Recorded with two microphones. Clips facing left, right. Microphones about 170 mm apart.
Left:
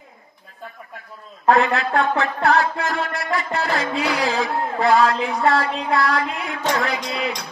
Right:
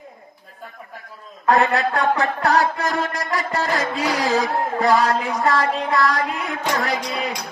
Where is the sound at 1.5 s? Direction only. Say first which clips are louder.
Even; 40° right (ahead or behind).